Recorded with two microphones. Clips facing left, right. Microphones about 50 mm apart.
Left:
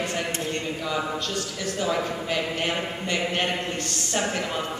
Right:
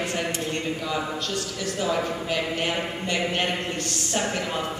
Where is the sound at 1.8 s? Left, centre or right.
Centre.